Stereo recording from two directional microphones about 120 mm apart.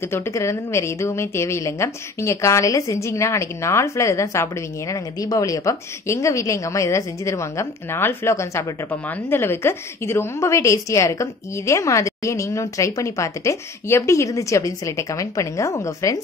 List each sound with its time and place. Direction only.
0.1 s a woman's voice: 25° left (ahead or behind)